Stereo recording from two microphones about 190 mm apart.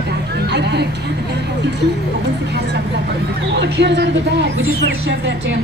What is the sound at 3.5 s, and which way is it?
Speech, 65° right (ahead or behind).